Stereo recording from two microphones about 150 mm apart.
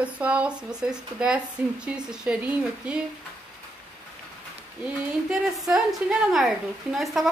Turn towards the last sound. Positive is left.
turn(degrees=0)  # may be behind; listen again after turning